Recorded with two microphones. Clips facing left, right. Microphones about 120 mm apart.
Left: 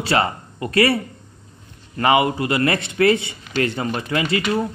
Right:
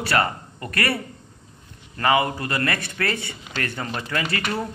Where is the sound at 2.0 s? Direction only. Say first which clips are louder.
Left 4 dB; 20° left (ahead or behind).